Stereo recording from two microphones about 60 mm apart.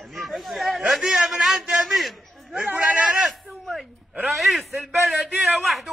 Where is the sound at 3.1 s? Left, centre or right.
Centre.